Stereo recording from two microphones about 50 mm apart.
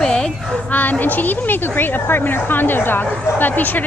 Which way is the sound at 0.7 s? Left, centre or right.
Left.